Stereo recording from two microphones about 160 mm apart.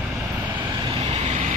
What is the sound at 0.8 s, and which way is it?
Vehicle, 40° right (ahead or behind).